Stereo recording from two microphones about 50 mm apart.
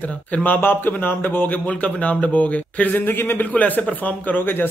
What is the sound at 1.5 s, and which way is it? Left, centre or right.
A man's voice, left.